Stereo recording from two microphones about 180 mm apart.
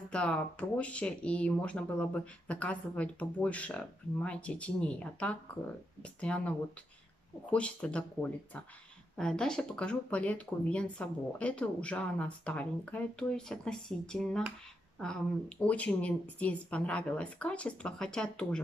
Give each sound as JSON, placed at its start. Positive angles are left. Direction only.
{"t": 0.1, "sound": "speech", "side_deg": 5}
{"t": 7.5, "sound": "speech", "side_deg": 5}